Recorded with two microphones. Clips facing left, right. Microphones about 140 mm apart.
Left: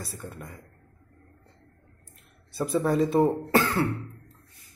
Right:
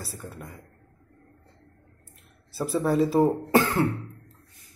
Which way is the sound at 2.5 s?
Centre (ahead or behind).